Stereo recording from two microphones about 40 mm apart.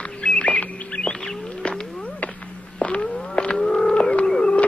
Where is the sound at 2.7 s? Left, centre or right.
Left.